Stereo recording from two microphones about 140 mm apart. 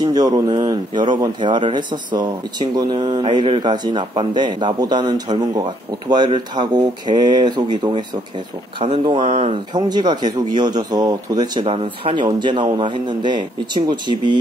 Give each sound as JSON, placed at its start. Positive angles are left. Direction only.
{"t": 0.0, "sound": "a man's voice", "side_deg": -30}
{"t": 8.7, "sound": "speech", "side_deg": -40}
{"t": 9.8, "sound": "a man's voice", "side_deg": -30}
{"t": 11.6, "sound": "a man's voice", "side_deg": -45}